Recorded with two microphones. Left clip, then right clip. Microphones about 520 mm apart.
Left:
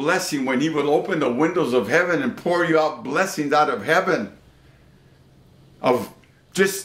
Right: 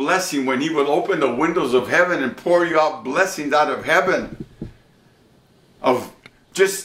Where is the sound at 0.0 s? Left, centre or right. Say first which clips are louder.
Right 2 dB; left.